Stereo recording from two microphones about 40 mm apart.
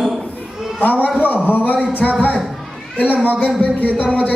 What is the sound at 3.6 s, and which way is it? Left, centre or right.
Speech, left.